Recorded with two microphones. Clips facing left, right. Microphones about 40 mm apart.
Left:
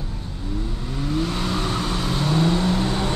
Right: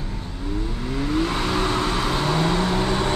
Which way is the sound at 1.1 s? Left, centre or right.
Right.